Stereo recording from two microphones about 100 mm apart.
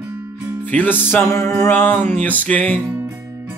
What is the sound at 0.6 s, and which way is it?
Music, 15° left (ahead or behind).